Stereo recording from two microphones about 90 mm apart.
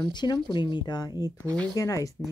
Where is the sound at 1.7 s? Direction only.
40° left (ahead or behind).